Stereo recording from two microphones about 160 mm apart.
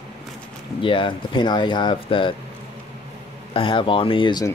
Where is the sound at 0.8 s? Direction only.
30° left (ahead or behind).